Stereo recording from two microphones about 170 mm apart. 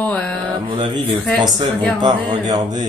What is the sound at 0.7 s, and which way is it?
Speech, 30° right (ahead or behind).